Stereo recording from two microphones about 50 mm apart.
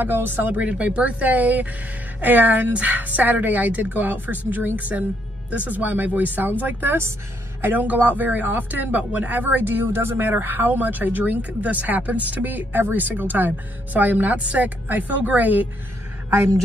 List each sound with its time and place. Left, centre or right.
0.0 s speech: right
0.6 s speech: right